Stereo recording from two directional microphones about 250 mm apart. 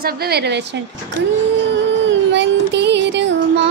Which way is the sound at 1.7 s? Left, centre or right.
Right.